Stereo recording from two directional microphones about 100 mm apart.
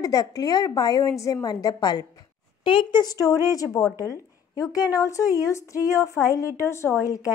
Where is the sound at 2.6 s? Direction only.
55° left (ahead or behind).